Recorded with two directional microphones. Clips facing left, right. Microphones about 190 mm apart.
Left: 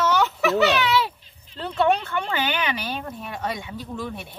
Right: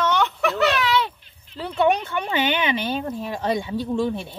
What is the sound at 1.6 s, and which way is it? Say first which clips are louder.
Speech: right 1 dB; 10° right (ahead or behind).